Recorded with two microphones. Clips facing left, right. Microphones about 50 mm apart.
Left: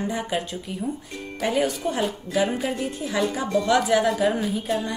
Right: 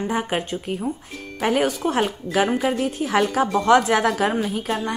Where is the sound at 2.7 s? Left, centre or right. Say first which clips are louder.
Right 6 dB; right.